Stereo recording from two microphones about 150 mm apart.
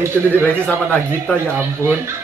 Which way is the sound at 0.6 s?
5° left (ahead or behind).